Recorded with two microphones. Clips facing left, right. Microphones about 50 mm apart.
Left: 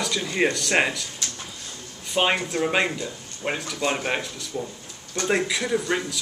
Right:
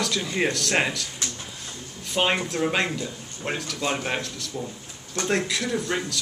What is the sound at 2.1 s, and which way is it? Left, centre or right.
Speech, centre.